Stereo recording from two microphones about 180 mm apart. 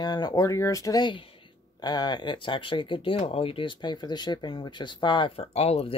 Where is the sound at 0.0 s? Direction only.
20° left (ahead or behind).